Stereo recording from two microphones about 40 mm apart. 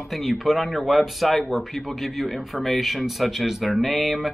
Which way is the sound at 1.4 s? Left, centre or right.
Centre.